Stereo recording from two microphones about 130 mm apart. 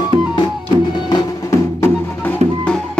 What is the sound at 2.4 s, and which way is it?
Music, 55° right (ahead or behind).